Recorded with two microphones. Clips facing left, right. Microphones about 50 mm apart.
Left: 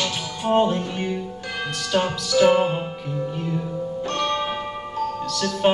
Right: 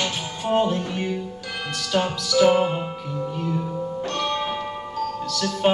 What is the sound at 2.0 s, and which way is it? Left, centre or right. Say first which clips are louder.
Music: even; left.